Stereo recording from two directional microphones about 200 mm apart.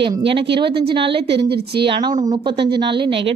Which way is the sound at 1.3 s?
55° right (ahead or behind).